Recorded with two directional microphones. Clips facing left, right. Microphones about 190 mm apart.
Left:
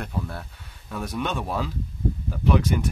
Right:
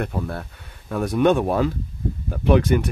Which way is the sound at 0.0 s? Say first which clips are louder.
Right 5 dB; 55° right (ahead or behind).